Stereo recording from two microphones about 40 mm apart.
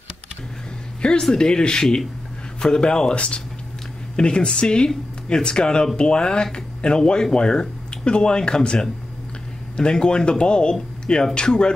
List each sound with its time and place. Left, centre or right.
1.2 s speech: centre